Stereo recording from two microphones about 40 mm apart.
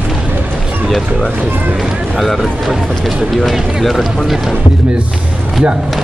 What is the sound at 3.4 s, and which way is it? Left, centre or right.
Speech, centre.